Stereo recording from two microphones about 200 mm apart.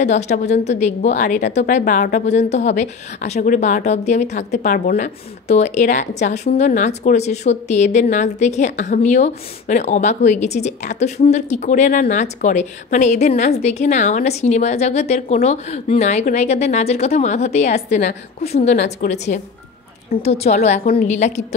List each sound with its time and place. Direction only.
0.0 s a woman's voice: 35° left (ahead or behind)